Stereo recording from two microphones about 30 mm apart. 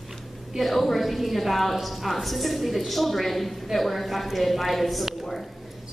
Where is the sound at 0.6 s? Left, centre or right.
Centre.